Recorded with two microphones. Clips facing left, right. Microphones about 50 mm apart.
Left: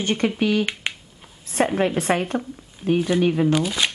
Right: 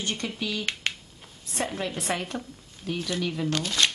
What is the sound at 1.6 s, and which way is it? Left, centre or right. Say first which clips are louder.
Speech: left 10 dB; left.